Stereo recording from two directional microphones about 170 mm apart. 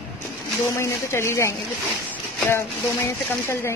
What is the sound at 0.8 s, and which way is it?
Speech, 15° left (ahead or behind).